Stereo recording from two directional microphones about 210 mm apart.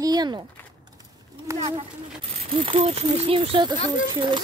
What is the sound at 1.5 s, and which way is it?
Speech, 15° right (ahead or behind).